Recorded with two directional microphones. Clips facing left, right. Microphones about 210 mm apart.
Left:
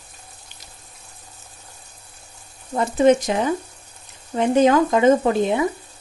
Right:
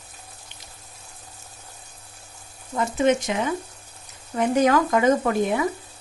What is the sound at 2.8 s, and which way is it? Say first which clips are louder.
Speech: left 5 dB; 35° left (ahead or behind).